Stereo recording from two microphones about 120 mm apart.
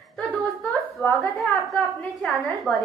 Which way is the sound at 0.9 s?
Centre (ahead or behind).